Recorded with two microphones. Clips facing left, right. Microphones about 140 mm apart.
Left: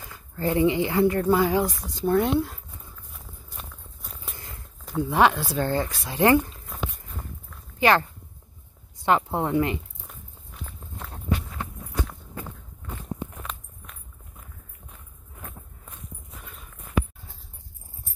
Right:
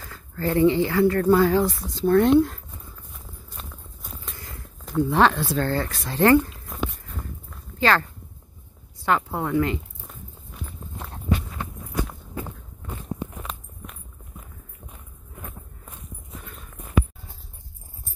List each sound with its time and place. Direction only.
0.0 s speech: 15° left (ahead or behind)
3.6 s walk: 10° left (ahead or behind)
4.3 s a sound: 20° left (ahead or behind)
4.8 s speech: 10° left (ahead or behind)
5.9 s a sound: 15° left (ahead or behind)
7.8 s speech: 15° left (ahead or behind)
11.9 s walk: 10° right (ahead or behind)
16.4 s clip-clop: centre (ahead or behind)